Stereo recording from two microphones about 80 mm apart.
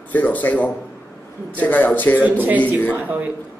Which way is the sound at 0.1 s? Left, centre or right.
Left.